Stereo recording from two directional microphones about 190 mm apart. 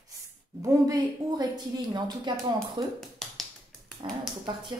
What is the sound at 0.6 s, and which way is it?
A woman's voice, 20° right (ahead or behind).